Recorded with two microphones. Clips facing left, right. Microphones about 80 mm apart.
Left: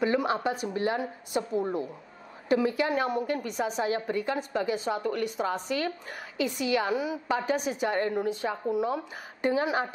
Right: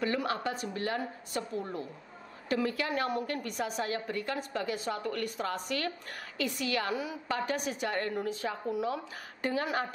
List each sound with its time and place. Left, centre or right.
0.0 s a woman's voice: centre
2.9 s a woman's voice: centre